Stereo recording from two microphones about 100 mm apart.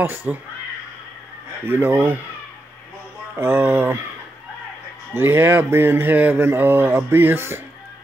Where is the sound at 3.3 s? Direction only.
25° right (ahead or behind).